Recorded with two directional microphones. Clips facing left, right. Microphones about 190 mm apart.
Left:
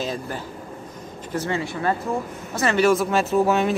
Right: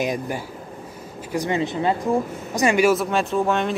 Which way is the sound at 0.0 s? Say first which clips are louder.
Right 3 dB; 15° right (ahead or behind).